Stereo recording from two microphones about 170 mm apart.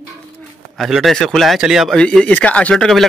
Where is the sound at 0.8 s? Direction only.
Centre (ahead or behind).